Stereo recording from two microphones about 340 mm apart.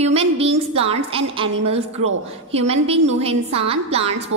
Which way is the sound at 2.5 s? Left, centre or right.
Centre.